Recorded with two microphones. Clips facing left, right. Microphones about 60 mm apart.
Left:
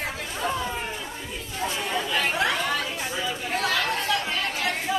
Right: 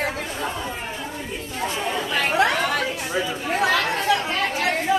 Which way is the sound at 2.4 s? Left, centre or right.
Right.